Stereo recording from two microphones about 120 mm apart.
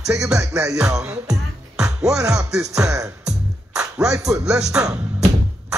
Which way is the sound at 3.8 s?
30° right (ahead or behind).